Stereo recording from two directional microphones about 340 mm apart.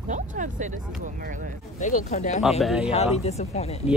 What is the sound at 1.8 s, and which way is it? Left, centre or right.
Speech, left.